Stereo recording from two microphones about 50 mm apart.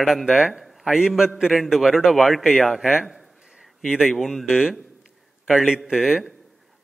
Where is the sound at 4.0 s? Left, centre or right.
Centre.